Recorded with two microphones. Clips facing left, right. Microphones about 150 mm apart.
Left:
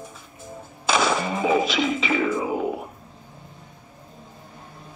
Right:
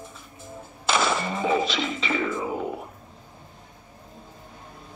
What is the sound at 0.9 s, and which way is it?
Music, 15° left (ahead or behind).